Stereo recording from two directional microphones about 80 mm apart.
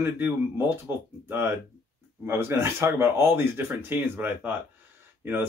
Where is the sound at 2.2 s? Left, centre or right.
Right.